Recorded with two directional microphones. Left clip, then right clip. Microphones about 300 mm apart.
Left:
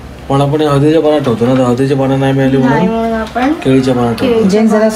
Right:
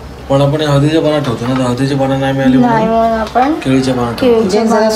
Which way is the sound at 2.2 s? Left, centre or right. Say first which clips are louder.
Left 2 dB; centre.